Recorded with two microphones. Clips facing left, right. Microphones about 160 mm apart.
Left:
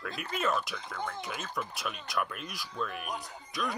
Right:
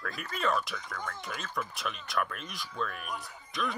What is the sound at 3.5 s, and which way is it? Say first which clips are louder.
Burping: right 1 dB; centre (ahead or behind).